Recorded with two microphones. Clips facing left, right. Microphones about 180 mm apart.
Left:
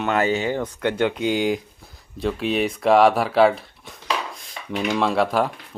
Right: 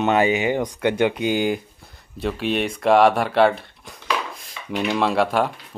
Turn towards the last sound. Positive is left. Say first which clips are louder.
# even
turn(degrees=0)  # may be behind; listen again after turning